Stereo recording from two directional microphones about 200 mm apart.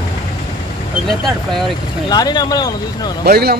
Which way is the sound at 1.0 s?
Centre (ahead or behind).